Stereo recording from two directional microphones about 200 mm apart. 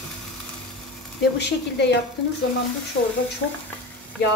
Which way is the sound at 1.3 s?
60° left (ahead or behind).